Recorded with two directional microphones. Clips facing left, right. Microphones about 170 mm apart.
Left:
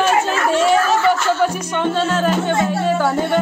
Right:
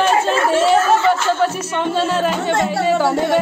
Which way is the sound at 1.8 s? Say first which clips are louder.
Even; 10° right (ahead or behind).